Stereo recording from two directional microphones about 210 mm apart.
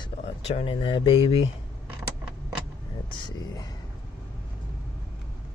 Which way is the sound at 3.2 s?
20° left (ahead or behind).